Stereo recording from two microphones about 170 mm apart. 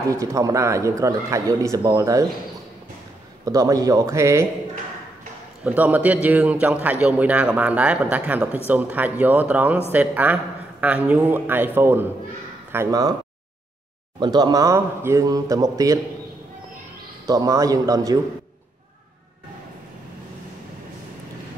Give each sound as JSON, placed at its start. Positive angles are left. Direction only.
{"t": 0.1, "sound": "a man's voice", "side_deg": -20}
{"t": 3.4, "sound": "a man's voice", "side_deg": -20}
{"t": 5.6, "sound": "a man's voice", "side_deg": -10}
{"t": 14.2, "sound": "a man's voice", "side_deg": -25}
{"t": 17.3, "sound": "a man's voice", "side_deg": -20}